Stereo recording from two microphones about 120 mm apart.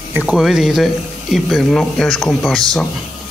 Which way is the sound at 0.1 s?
10° right (ahead or behind).